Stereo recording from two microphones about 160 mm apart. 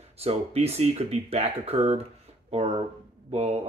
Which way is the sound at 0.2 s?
40° right (ahead or behind).